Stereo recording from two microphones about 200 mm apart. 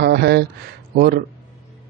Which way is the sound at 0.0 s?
55° right (ahead or behind).